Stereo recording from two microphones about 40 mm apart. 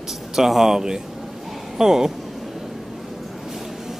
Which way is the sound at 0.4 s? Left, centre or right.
Centre.